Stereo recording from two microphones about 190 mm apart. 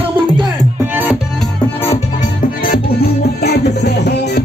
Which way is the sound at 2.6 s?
50° left (ahead or behind).